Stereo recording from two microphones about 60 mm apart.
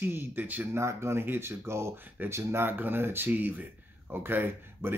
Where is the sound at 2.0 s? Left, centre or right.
Right.